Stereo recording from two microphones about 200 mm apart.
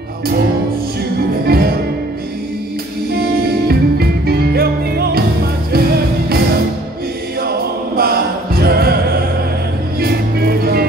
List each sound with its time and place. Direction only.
1.4 s music: 50° right (ahead or behind)
3.2 s music: 50° right (ahead or behind)
7.4 s a capella: 50° right (ahead or behind)
9.9 s music: 50° right (ahead or behind)